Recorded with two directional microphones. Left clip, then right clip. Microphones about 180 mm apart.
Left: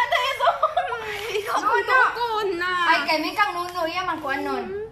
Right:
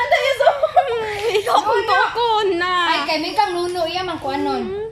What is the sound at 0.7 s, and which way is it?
Chuckle, 25° right (ahead or behind).